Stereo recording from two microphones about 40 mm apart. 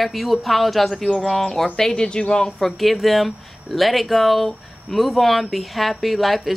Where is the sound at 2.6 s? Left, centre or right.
Centre.